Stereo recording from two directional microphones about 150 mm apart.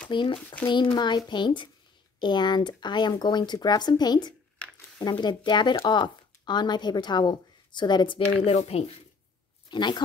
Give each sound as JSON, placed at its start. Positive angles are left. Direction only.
{"t": 0.1, "sound": "speech", "side_deg": 35}
{"t": 9.7, "sound": "speech", "side_deg": 30}